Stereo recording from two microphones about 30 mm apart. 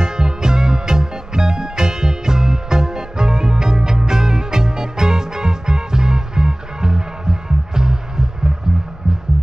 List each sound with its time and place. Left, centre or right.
0.0 s music: right